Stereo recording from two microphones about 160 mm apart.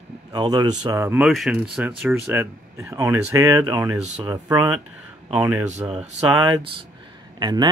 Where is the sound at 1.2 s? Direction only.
Centre (ahead or behind); by 4.7 s 20° right (ahead or behind).